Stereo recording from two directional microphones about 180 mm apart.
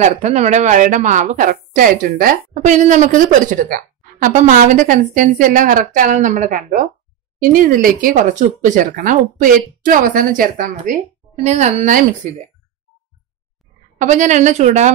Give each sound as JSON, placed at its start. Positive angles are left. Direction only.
{"t": 0.0, "sound": "a woman's voice", "side_deg": -40}
{"t": 13.9, "sound": "a woman's voice", "side_deg": -40}